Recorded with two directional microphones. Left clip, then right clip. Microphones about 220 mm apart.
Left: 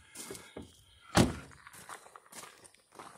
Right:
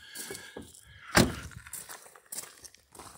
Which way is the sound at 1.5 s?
50° right (ahead or behind).